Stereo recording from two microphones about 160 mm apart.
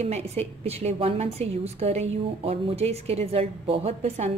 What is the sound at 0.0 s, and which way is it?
A woman's voice, 40° right (ahead or behind).